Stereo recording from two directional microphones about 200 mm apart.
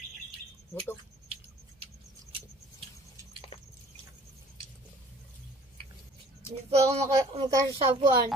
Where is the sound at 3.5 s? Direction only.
30° left (ahead or behind).